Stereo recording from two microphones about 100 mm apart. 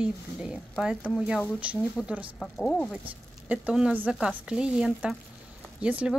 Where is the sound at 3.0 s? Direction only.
15° right (ahead or behind).